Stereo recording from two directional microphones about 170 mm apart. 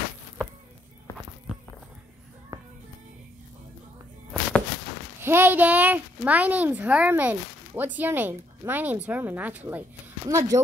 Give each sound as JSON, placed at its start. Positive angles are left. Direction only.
{"t": 2.5, "sound": "music", "side_deg": -20}
{"t": 4.3, "sound": "a sound", "side_deg": 5}
{"t": 5.2, "sound": "a child's voice", "side_deg": -15}